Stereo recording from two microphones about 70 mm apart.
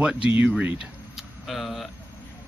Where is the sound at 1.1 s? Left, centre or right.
Centre.